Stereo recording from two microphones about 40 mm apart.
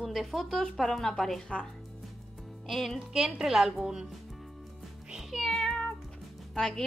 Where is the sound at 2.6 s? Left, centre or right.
Centre.